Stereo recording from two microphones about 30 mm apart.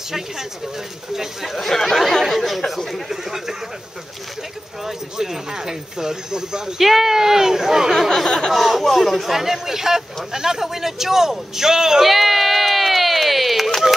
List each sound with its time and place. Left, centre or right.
1.4 s speech: centre
1.7 s speech: centre
3.1 s speech: centre
5.1 s speech: centre
6.8 s speech: centre
8.5 s speech: centre
9.3 s speech: centre
12.1 s a sound: centre